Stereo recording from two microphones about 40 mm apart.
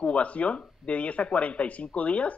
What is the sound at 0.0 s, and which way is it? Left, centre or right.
Speech, left.